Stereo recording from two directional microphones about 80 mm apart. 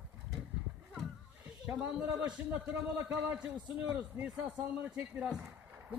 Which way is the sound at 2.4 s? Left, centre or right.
Right.